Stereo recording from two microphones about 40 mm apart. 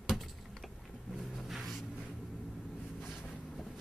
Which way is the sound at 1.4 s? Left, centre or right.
Centre.